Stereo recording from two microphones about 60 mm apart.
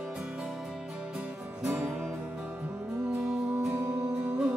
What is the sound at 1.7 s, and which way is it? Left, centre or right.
Music, centre.